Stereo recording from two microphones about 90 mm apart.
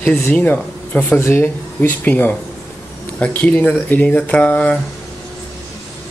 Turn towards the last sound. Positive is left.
turn(degrees=15)  # may be behind; listen again after turning